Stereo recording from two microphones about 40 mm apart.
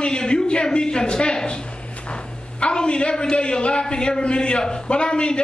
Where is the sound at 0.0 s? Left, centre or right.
Left.